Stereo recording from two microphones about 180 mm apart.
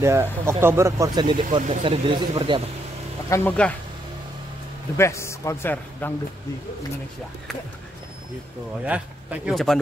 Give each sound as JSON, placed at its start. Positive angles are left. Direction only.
{"t": 0.0, "sound": "speech", "side_deg": -15}
{"t": 3.3, "sound": "a man's voice", "side_deg": 10}
{"t": 4.9, "sound": "a man's voice", "side_deg": 15}
{"t": 8.8, "sound": "speech", "side_deg": -10}